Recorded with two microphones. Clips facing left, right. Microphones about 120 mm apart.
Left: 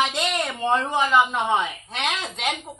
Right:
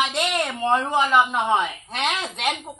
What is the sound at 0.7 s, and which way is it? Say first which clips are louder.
Speech: right 2 dB; 15° right (ahead or behind).